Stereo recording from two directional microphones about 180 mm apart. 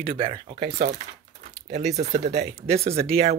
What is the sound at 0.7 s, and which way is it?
Speech, 40° right (ahead or behind).